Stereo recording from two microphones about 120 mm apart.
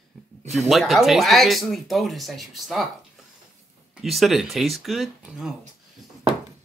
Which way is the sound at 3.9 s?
Centre (ahead or behind).